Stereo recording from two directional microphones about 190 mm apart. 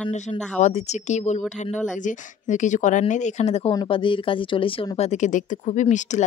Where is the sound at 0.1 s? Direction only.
40° left (ahead or behind).